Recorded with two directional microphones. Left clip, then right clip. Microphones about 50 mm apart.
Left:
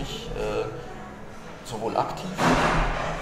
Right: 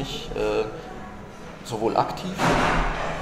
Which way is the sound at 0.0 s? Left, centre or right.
Right.